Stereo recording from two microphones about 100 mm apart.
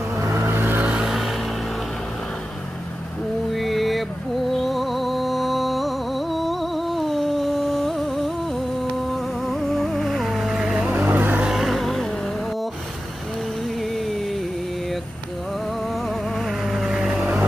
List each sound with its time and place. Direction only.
0.2 s vehicle: 30° right (ahead or behind); by 1.3 s 5° right (ahead or behind)
3.5 s a sound: centre (ahead or behind)
4.5 s music: centre (ahead or behind)
11.0 s vehicle: 20° right (ahead or behind)
11.4 s music: centre (ahead or behind)
16.4 s vehicle: 5° right (ahead or behind)